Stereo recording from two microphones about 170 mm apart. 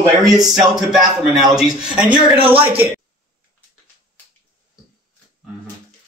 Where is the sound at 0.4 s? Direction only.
Centre (ahead or behind).